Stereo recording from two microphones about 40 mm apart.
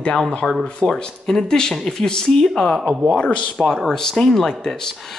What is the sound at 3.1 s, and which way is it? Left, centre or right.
Speech, left.